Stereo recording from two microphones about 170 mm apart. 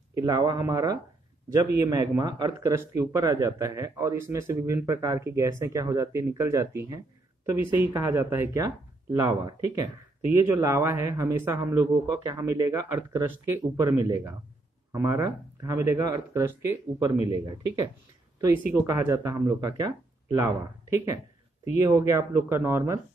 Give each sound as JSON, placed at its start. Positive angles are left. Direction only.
{"t": 0.2, "sound": "speech", "side_deg": -25}